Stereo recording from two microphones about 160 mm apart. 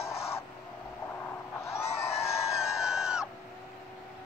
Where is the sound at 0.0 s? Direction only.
15° left (ahead or behind).